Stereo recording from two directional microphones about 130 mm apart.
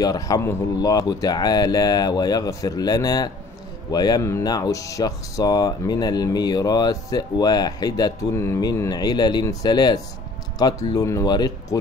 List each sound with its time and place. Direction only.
0.0 s speech: 30° left (ahead or behind)